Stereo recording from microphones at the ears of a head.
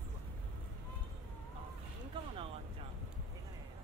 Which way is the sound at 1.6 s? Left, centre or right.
Right.